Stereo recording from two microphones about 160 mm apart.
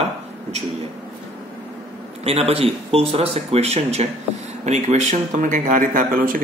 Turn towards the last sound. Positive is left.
turn(degrees=-60)  # may be behind; listen again after turning